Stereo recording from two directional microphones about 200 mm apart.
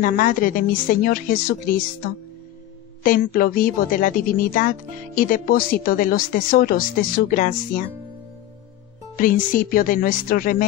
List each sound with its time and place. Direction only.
0.0 s speech: 45° left (ahead or behind)
3.0 s speech: 45° left (ahead or behind)
9.1 s speech: 45° left (ahead or behind)